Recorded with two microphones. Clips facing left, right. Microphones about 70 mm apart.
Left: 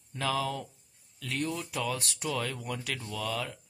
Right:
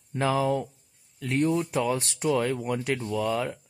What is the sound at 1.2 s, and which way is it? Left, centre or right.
Speech, right.